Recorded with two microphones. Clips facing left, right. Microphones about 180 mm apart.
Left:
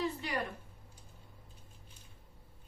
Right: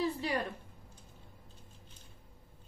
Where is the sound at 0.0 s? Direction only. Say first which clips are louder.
Right 3 dB; 30° right (ahead or behind).